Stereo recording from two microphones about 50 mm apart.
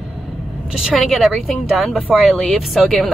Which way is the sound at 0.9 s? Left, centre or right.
Centre.